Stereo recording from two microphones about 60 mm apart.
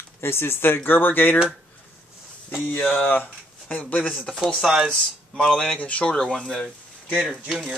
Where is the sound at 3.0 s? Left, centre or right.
Left.